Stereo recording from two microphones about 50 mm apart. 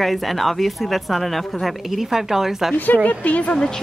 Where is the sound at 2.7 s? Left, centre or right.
Left.